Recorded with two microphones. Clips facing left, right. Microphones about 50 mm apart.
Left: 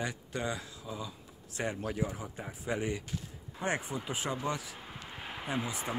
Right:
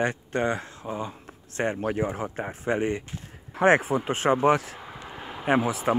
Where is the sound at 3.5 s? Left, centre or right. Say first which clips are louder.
Right 14 dB; right.